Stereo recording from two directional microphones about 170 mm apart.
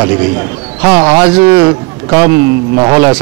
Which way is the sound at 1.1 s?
10° right (ahead or behind).